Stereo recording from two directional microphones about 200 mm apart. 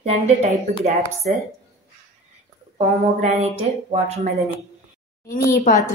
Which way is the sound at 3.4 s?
30° right (ahead or behind).